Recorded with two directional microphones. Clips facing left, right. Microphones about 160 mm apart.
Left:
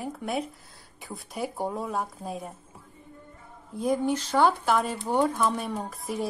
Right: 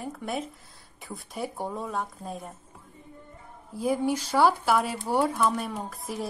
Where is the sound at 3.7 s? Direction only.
5° right (ahead or behind).